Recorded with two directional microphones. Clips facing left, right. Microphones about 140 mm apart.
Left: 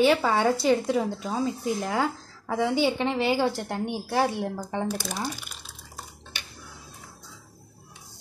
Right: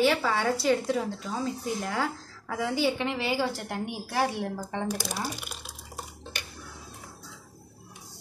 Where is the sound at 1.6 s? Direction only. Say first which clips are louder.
Left 4 dB; 25° left (ahead or behind).